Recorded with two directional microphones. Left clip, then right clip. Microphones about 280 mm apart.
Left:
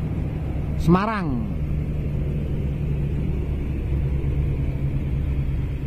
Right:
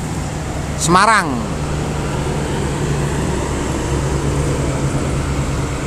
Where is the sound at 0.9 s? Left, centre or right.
Centre.